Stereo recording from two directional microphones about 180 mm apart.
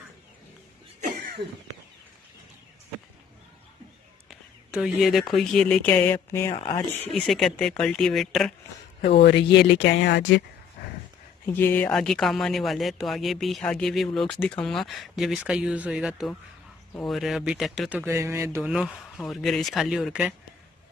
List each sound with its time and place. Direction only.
4.3 s speech: 5° right (ahead or behind); by 6.5 s 10° left (ahead or behind)
6.5 s speech: 30° left (ahead or behind)
7.1 s speech: centre (ahead or behind)
9.2 s speech: 70° left (ahead or behind)
11.4 s speech: 10° left (ahead or behind); by 18.7 s 15° right (ahead or behind)
18.7 s speech: centre (ahead or behind)